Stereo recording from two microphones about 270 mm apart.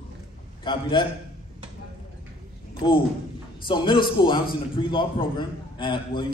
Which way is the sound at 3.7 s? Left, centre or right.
Centre.